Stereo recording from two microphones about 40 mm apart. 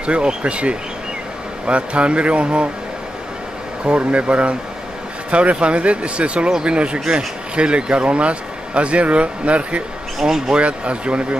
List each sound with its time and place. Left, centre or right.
0.0 s speech: right
3.8 s speech: right
10.1 s speech: centre
10.5 s speech: right